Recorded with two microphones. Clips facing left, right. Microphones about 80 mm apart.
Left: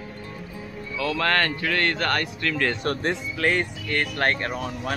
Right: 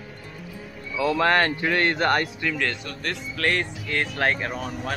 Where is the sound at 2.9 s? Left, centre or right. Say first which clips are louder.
Left 11 dB; left.